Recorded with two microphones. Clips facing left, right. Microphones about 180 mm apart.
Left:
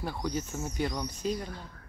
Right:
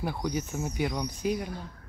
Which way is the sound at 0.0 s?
15° right (ahead or behind).